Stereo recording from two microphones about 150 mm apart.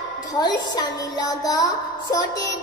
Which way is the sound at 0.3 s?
30° left (ahead or behind).